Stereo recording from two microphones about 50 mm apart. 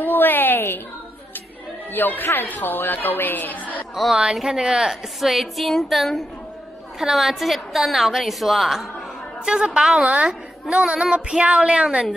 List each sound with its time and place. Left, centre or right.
0.0 s a sound: left
1.9 s a woman's voice: left
3.9 s speech: centre
4.6 s a woman's voice: centre
9.4 s a woman's voice: centre